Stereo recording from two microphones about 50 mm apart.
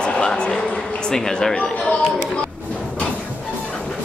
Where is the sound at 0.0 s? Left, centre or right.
Centre.